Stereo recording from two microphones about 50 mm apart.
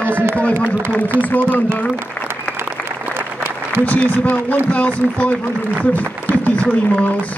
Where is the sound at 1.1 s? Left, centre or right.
Left.